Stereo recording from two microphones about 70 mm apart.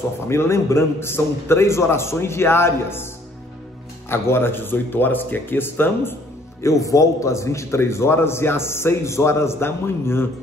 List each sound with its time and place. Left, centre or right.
0.3 s a man's voice: left
4.1 s a man's voice: left
6.6 s a man's voice: left